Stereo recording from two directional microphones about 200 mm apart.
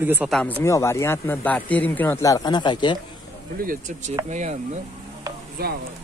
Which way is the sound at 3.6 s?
40° right (ahead or behind).